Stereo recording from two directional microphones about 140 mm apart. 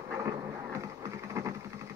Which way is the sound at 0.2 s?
20° right (ahead or behind).